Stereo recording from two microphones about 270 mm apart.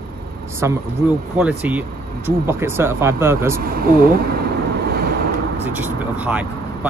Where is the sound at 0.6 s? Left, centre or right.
Centre.